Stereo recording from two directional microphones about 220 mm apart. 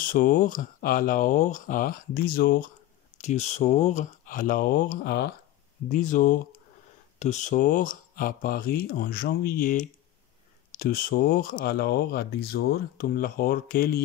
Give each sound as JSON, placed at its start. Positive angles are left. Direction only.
{"t": 0.1, "sound": "speech", "side_deg": 40}
{"t": 3.2, "sound": "speech", "side_deg": 30}